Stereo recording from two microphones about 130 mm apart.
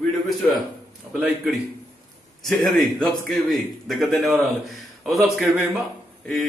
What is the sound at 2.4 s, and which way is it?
A man's voice, centre (ahead or behind).